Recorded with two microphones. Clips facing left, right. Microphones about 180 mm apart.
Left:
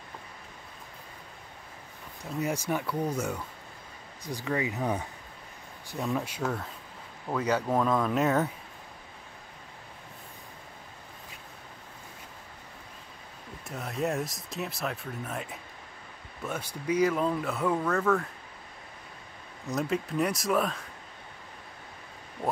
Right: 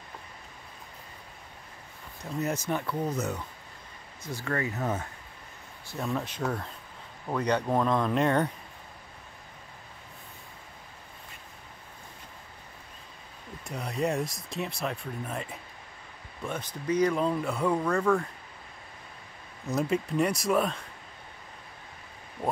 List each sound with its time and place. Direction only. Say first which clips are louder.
2.4 s speech: even; 10° left (ahead or behind)
5.9 s speech: left 1 dB; centre (ahead or behind)
13.7 s speech: right 1 dB; centre (ahead or behind)
16.4 s speech: even; 10° left (ahead or behind)
19.6 s speech: right 2 dB; centre (ahead or behind)